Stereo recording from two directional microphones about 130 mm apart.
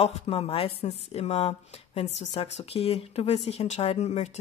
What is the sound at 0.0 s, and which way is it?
Speech, 50° left (ahead or behind).